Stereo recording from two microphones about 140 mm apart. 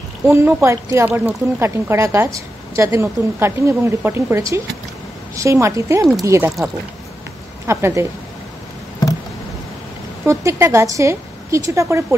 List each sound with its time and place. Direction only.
0.3 s speech: 20° right (ahead or behind)
7.6 s speech: 20° right (ahead or behind)
10.2 s speech: 20° right (ahead or behind)